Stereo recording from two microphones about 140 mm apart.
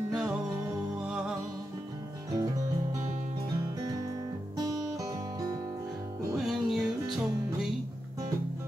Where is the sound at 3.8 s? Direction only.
25° right (ahead or behind).